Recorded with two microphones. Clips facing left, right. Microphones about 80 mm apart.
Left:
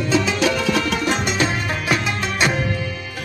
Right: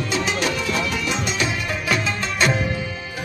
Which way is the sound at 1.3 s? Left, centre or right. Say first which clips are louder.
Left 3 dB; left.